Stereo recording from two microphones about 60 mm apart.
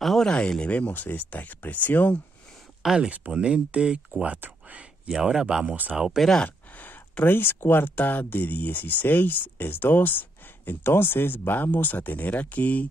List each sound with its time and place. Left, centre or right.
0.0 s a sound: centre
0.3 s speech: centre
2.8 s speech: centre
3.1 s speech: centre
5.0 s speech: centre
6.4 s a sound: left
7.9 s speech: left